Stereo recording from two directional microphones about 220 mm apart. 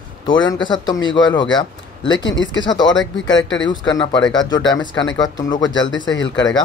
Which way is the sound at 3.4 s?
55° left (ahead or behind).